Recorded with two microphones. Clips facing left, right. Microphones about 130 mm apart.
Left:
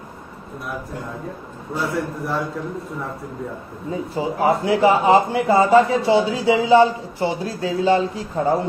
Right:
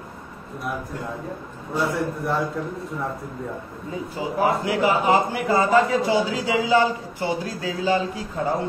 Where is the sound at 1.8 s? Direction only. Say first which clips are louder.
Even; centre (ahead or behind).